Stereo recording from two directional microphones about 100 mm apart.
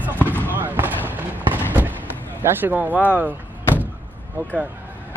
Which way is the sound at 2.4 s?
20° right (ahead or behind).